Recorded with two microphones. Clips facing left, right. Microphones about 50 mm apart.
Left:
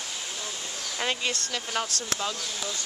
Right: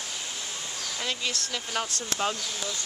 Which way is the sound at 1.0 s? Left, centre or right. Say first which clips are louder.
Left 3 dB; left.